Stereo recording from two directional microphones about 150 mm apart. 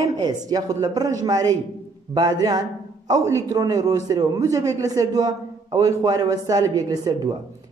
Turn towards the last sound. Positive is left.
turn(degrees=-25)  # may be behind; listen again after turning